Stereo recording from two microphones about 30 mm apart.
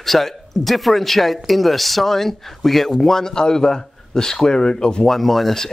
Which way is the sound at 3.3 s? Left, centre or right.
Left.